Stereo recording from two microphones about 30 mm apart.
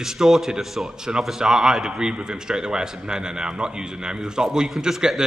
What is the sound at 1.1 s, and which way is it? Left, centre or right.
A man's voice, right.